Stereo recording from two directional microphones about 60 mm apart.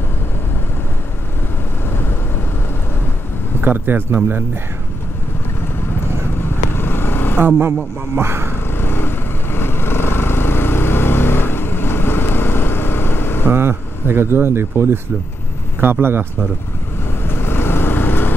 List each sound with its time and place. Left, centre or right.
3.6 s speech: right
6.3 s vehicle: left
7.3 s speech: right
8.6 s vehicle: left
13.5 s speech: right
17.2 s vehicle: left